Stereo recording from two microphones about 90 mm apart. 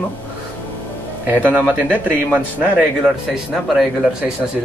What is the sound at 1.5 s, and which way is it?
Speech, 15° right (ahead or behind).